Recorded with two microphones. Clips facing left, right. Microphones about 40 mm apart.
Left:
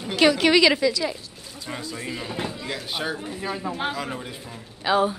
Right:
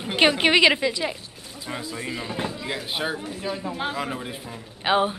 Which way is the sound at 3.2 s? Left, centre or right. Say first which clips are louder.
Even; centre.